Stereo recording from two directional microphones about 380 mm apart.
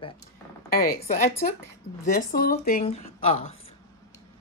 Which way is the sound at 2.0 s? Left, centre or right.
Left.